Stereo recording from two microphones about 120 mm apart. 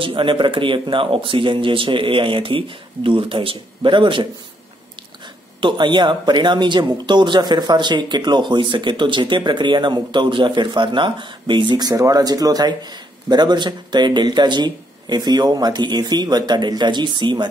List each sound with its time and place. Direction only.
0.0 s speech: 45° right (ahead or behind)
5.6 s speech: 40° right (ahead or behind)